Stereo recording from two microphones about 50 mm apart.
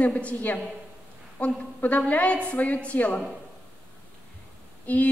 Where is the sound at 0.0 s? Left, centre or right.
Left.